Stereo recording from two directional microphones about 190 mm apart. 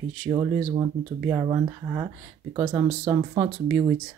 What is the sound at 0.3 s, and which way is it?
Speech, 25° right (ahead or behind).